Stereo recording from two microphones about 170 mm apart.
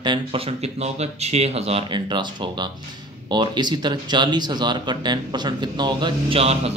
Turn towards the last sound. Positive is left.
turn(degrees=-35)  # may be behind; listen again after turning